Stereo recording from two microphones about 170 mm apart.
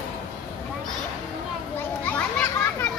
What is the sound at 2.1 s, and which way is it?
Children playing, 10° left (ahead or behind).